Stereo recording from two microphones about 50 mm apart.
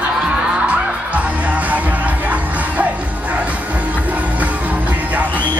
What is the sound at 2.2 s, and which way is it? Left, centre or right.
Music, right.